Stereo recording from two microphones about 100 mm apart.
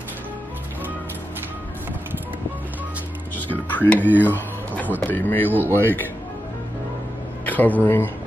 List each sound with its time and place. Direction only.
3.3 s speech: 15° left (ahead or behind)
7.4 s speech: 15° left (ahead or behind)